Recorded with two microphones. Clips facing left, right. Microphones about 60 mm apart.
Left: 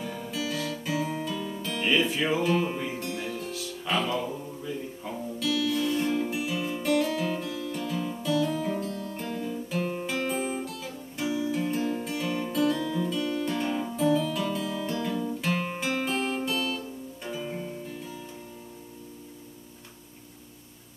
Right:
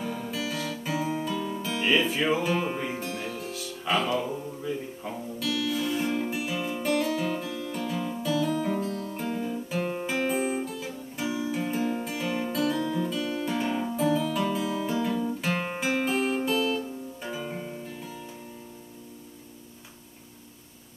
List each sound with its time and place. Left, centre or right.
0.0 s guitar: centre
2.6 s music: centre
3.0 s music: centre
9.3 s guitar: centre
10.1 s music: centre
15.5 s guitar: right
15.8 s music: centre